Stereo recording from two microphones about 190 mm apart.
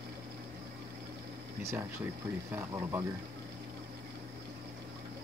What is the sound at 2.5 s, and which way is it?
Speech, 15° right (ahead or behind).